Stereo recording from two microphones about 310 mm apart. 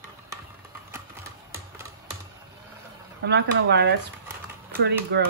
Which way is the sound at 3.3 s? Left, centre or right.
Right.